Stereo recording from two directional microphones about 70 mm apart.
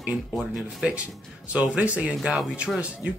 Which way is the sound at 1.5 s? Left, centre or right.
Centre.